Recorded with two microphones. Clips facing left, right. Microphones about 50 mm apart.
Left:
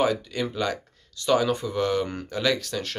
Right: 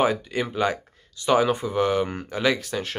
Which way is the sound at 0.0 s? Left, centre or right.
Right.